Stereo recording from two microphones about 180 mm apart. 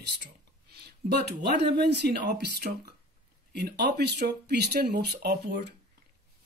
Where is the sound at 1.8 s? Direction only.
70° right (ahead or behind).